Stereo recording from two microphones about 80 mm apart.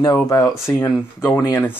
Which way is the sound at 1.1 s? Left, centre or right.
Left.